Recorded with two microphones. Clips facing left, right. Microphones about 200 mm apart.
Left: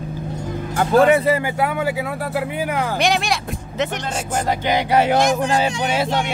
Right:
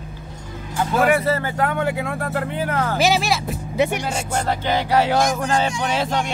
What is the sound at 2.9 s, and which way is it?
Speech, centre (ahead or behind).